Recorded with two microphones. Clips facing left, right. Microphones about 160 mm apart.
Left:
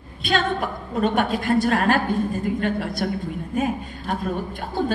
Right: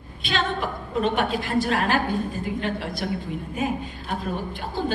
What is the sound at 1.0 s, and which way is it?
A woman's voice, 45° left (ahead or behind).